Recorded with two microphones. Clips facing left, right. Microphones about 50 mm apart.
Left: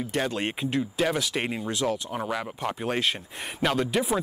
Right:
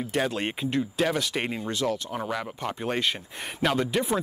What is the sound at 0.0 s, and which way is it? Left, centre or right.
Speech, centre.